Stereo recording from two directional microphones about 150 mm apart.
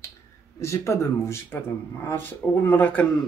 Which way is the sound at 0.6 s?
20° left (ahead or behind).